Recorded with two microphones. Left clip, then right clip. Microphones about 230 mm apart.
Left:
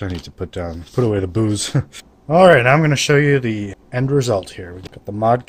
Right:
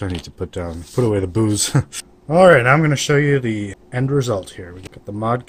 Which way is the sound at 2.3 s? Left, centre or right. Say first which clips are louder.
Left 1 dB; centre.